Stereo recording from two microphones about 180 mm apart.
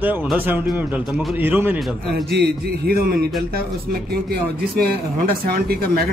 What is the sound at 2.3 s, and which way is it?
Speech, 65° right (ahead or behind).